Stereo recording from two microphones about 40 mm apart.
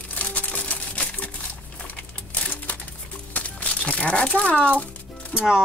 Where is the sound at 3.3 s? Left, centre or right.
Left.